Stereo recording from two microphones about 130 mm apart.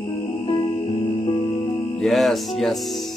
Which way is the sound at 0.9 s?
45° left (ahead or behind).